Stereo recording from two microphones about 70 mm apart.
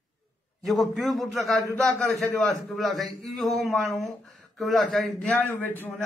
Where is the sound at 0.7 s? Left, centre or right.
Centre.